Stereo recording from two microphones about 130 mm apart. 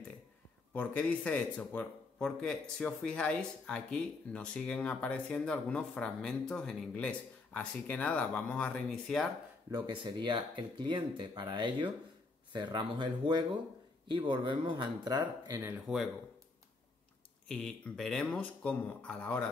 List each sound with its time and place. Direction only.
0.7 s speech: 10° left (ahead or behind)
9.7 s speech: 40° right (ahead or behind)
17.5 s speech: 5° left (ahead or behind)